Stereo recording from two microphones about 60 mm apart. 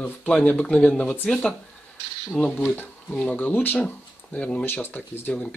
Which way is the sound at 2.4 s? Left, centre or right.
Left.